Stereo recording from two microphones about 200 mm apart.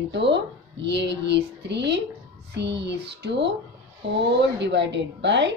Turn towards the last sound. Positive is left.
turn(degrees=-60)  # may be behind; listen again after turning